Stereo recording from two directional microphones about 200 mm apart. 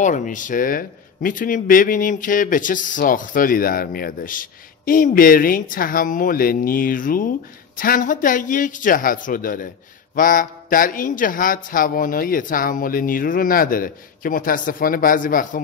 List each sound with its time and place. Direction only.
0.0 s speech: 40° left (ahead or behind)